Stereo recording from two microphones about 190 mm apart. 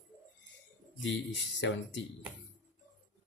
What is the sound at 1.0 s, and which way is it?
Speech, 70° left (ahead or behind).